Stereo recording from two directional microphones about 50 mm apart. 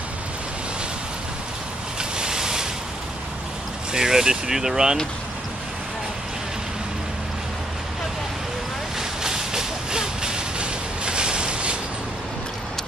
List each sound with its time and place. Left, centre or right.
2.0 s a sound: centre
3.9 s speech: centre
9.2 s vehicle: centre